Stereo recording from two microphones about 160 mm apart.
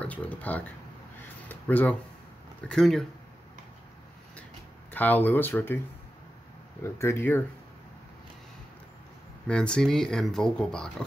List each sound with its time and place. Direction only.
0.0 s speech: 10° left (ahead or behind)
4.9 s speech: 10° left (ahead or behind)
6.8 s speech: 15° left (ahead or behind)
9.5 s speech: 5° left (ahead or behind)